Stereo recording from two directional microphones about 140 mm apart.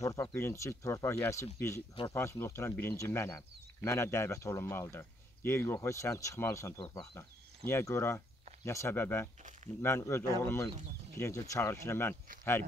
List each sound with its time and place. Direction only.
0.0 s speech: 20° left (ahead or behind)